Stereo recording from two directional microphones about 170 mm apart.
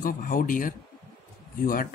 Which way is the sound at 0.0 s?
55° left (ahead or behind).